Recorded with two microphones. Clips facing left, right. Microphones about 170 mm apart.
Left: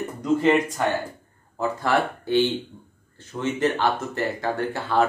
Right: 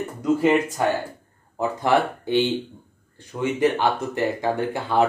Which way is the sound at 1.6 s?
20° right (ahead or behind).